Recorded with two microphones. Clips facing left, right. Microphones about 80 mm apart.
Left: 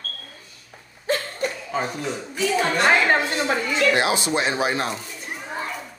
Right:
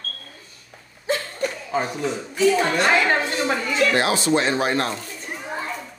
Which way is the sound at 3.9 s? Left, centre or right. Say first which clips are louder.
Right 2 dB; centre.